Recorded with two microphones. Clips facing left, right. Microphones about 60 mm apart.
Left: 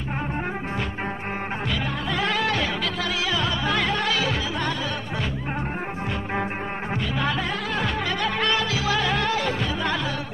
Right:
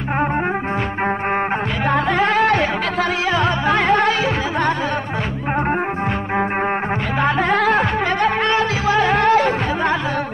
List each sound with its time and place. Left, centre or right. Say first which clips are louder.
1.9 s music: right 12 dB; right
7.2 s music: right 10 dB; right
7.5 s music: right 12 dB; right
8.2 s music: right 6 dB; right